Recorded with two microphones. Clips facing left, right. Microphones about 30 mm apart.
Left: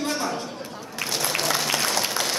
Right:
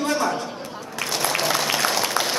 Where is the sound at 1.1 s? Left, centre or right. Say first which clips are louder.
Right 3 dB; centre.